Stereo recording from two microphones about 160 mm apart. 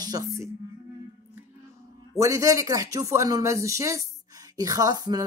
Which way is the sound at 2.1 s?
20° right (ahead or behind).